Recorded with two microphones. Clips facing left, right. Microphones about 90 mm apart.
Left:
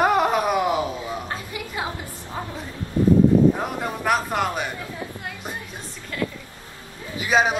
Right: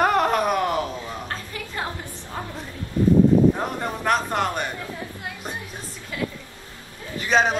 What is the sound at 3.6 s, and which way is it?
Speech, 5° left (ahead or behind).